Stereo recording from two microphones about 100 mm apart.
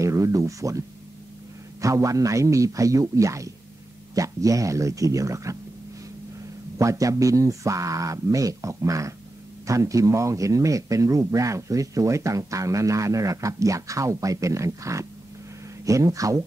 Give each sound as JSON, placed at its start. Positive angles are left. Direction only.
{"t": 0.0, "sound": "a sound", "side_deg": -30}
{"t": 1.8, "sound": "a man's voice", "side_deg": -35}
{"t": 6.8, "sound": "a man's voice", "side_deg": -35}